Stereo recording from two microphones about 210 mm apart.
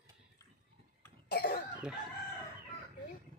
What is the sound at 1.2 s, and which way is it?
Cough, 50° left (ahead or behind).